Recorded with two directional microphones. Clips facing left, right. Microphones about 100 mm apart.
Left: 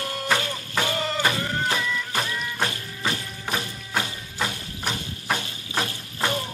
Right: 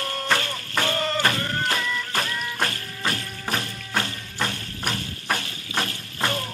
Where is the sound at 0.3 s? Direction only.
10° left (ahead or behind).